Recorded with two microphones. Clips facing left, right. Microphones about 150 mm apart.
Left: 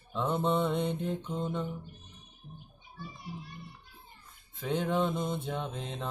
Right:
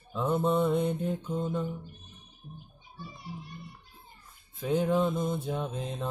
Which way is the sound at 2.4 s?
20° right (ahead or behind).